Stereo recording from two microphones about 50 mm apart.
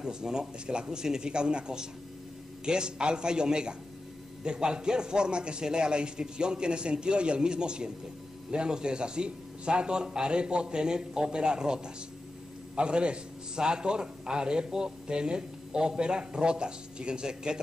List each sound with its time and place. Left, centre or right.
0.0 s a man's voice: centre